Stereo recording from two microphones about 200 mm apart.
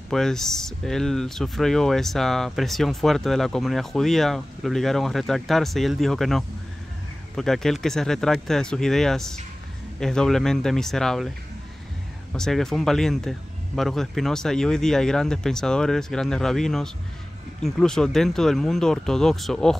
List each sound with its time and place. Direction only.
0.1 s speech: centre (ahead or behind)
12.4 s speech: centre (ahead or behind)